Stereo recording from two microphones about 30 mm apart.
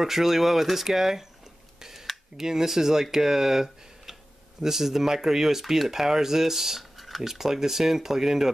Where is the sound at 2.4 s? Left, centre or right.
Centre.